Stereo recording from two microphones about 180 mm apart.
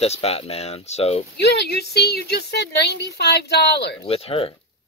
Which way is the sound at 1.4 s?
65° left (ahead or behind).